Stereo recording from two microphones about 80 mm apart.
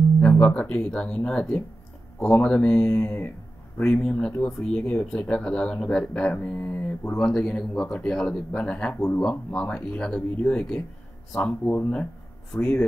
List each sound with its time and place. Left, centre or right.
0.2 s speech: left
3.0 s speech: left
3.8 s speech: centre
7.2 s speech: centre